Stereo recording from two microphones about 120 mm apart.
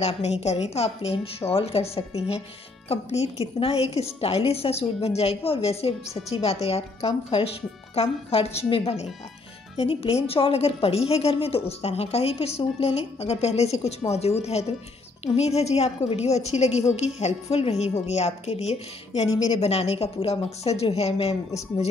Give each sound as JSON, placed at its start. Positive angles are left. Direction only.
{"t": 0.0, "sound": "a woman's voice", "side_deg": 65}
{"t": 2.9, "sound": "a woman's voice", "side_deg": 65}
{"t": 3.5, "sound": "a woman's voice", "side_deg": 55}